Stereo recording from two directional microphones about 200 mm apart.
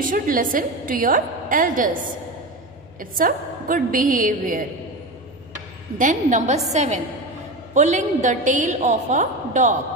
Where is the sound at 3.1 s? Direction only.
45° right (ahead or behind).